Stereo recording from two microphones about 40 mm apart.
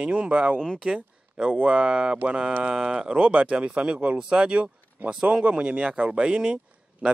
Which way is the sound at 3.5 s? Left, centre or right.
Right.